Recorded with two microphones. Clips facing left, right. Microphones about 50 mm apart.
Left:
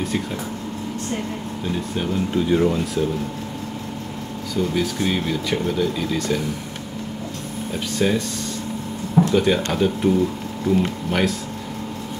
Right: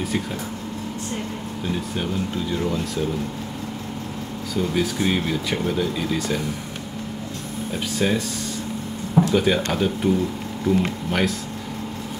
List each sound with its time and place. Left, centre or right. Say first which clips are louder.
2.3 s speech: left 10 dB; centre
2.8 s speech: left 3 dB; centre
4.6 s speech: left 1 dB; centre
7.7 s speech: left 2 dB; centre
9.3 s speech: left 1 dB; centre